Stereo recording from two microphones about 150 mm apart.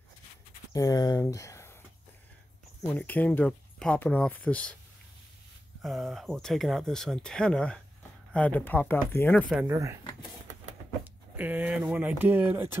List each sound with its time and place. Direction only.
0.7 s speech: 25° left (ahead or behind)
2.9 s speech: 10° left (ahead or behind)
5.8 s speech: centre (ahead or behind)
9.7 s speech: 20° right (ahead or behind)
11.3 s speech: 10° right (ahead or behind)